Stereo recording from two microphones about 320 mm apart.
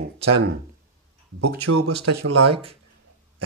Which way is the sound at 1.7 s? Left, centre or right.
Right.